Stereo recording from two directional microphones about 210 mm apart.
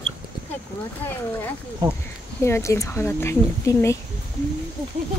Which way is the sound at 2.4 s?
15° left (ahead or behind).